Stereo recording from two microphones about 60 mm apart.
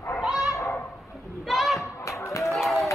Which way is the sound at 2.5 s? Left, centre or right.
Centre.